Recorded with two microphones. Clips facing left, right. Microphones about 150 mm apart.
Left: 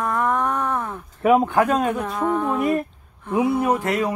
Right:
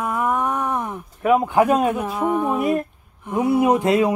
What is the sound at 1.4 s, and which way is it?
A woman's voice, 15° right (ahead or behind).